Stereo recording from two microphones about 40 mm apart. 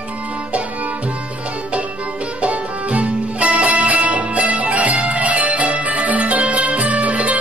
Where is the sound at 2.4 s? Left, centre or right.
Right.